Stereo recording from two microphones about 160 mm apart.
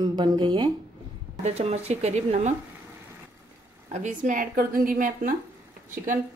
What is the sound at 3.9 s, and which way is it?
A woman's voice, 50° right (ahead or behind).